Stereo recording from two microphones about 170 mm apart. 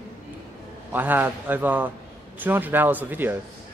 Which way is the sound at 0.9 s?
10° right (ahead or behind).